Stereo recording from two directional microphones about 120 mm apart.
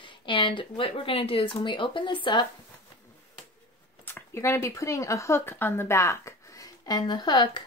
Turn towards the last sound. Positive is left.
turn(degrees=35)  # may be behind; listen again after turning